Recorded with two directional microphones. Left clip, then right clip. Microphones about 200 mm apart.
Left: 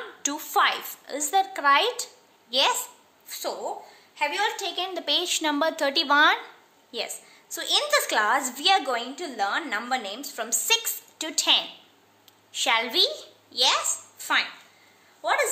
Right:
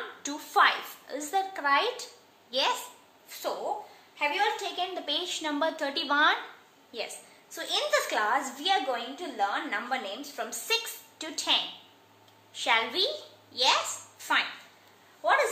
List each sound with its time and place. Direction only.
0.2 s a sound: 35° left (ahead or behind)
2.5 s a woman's voice: 35° left (ahead or behind)
4.2 s a woman's voice: 40° left (ahead or behind)